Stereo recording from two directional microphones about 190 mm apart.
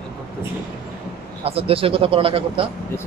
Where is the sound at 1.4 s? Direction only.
30° right (ahead or behind).